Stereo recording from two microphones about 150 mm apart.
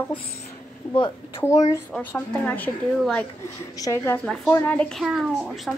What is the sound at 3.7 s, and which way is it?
A woman's voice, 20° left (ahead or behind).